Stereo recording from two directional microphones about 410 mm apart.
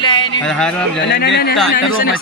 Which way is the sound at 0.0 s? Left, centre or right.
Centre.